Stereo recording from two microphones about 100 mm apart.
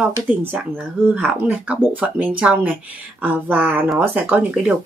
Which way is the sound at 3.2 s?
20° right (ahead or behind).